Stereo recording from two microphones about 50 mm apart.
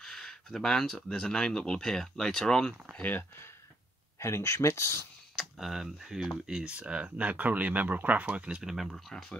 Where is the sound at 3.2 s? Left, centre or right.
Left.